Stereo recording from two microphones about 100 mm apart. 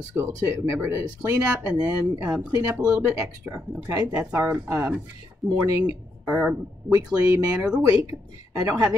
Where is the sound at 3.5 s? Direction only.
30° right (ahead or behind).